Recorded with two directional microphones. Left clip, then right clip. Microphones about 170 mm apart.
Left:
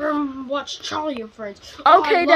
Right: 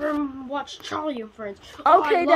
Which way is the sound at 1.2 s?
30° left (ahead or behind).